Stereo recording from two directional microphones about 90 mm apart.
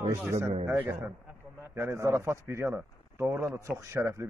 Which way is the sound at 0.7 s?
30° right (ahead or behind).